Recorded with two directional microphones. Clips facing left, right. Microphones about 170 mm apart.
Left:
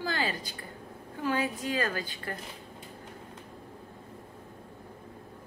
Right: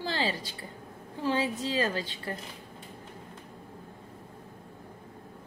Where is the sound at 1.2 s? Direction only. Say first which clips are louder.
Right 1 dB; 25° right (ahead or behind).